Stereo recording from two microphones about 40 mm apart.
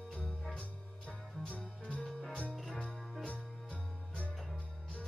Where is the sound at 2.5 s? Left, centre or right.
Centre.